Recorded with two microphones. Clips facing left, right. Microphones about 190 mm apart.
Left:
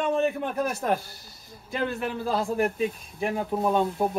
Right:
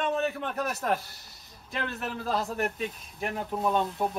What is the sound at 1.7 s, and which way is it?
Speech, centre (ahead or behind).